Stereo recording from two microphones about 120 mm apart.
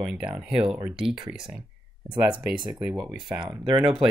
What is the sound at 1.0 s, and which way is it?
Speech, 5° right (ahead or behind).